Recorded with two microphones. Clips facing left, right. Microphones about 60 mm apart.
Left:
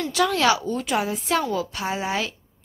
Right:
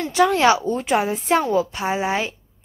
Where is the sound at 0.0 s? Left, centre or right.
Right.